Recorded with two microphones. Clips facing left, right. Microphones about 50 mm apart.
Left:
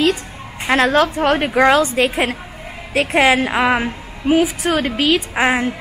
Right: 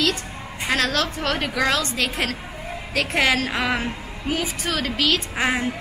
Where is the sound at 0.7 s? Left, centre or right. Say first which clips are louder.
Left 8 dB; left.